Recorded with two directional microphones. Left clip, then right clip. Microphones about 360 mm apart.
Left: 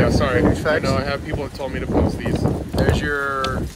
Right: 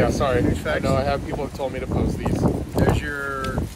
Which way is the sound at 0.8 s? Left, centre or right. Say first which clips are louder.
Even; centre.